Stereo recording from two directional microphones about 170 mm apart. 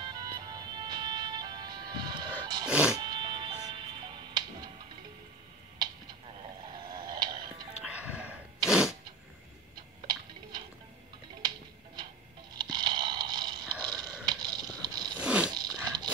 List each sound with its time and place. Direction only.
0.0 s music: 25° right (ahead or behind)
2.7 s music: 5° right (ahead or behind)
3.0 s music: 25° right (ahead or behind)
6.6 s a sound: 25° right (ahead or behind)
7.8 s sneeze: 10° right (ahead or behind)
11.4 s music: 25° right (ahead or behind)
12.5 s a sound: 25° right (ahead or behind)
15.1 s a sound: 5° right (ahead or behind)
15.5 s dog: 25° right (ahead or behind)